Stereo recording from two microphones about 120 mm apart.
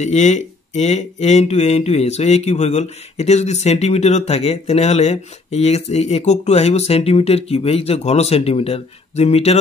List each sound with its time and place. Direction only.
0.0 s speech: 70° left (ahead or behind)